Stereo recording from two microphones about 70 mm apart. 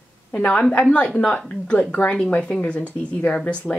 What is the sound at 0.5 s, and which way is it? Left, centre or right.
Speech, centre.